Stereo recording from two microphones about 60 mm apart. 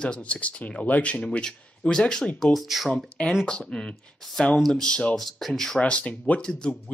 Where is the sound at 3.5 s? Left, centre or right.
Centre.